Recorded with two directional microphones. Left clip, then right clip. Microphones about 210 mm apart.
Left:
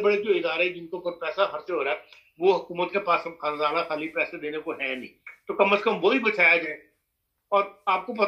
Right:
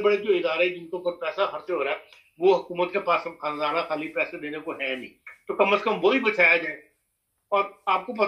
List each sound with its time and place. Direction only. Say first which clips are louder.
0.0 s speech: right 1 dB; 20° left (ahead or behind)